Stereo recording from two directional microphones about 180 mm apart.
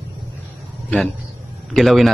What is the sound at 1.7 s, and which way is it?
Speech, centre (ahead or behind).